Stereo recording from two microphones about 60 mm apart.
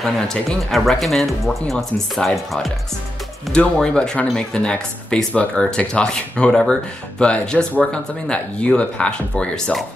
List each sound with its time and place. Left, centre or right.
0.0 s speech: centre
3.5 s speech: centre